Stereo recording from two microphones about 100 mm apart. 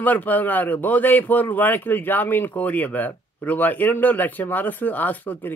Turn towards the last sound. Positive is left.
turn(degrees=20)  # may be behind; listen again after turning